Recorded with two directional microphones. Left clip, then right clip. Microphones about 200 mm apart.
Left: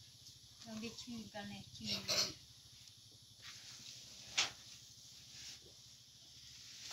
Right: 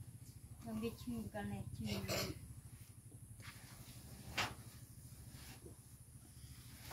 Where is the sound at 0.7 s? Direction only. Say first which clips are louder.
Right 3 dB; 10° right (ahead or behind).